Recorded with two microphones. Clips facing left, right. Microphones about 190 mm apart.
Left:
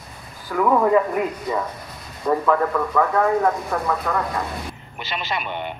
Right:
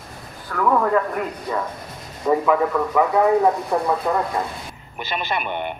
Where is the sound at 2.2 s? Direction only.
5° right (ahead or behind).